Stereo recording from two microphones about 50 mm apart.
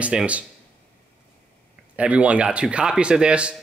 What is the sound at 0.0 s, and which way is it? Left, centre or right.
Speech, right.